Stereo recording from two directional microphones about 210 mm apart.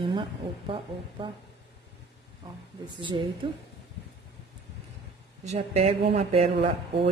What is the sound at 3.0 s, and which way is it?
Speech, 25° right (ahead or behind).